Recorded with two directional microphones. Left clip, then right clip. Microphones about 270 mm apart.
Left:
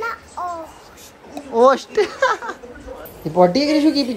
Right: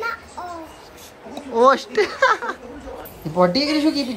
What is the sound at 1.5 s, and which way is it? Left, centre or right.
Speech, centre.